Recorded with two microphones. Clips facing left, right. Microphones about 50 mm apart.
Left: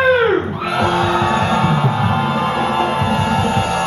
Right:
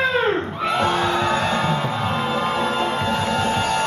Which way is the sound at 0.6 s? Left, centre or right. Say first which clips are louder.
Left 3 dB; centre.